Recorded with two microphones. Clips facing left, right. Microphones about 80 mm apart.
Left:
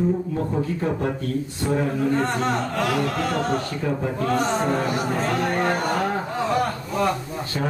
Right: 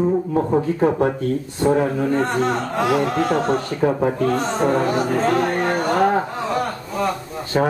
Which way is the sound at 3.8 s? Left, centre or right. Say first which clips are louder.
Right 10 dB; right.